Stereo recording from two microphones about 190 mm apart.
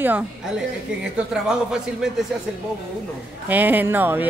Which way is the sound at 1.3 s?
5° right (ahead or behind).